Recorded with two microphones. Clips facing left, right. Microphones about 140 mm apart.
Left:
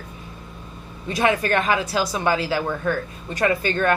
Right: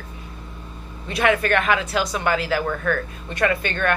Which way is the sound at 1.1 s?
30° left (ahead or behind).